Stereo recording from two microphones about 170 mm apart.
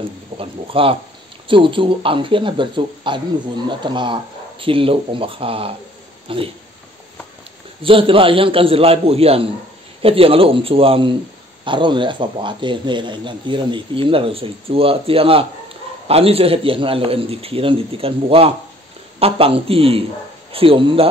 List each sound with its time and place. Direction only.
0.4 s a man's voice: 30° right (ahead or behind)
7.8 s a man's voice: 30° right (ahead or behind)